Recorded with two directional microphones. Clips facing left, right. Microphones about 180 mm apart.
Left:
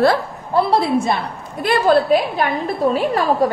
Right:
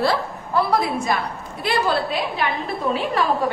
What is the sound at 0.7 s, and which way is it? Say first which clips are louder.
Speech: left 4 dB; 30° left (ahead or behind).